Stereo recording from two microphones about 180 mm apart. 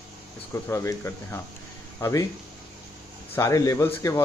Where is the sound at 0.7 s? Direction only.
15° left (ahead or behind).